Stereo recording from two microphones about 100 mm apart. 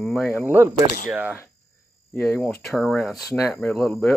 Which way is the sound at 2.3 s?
Centre (ahead or behind).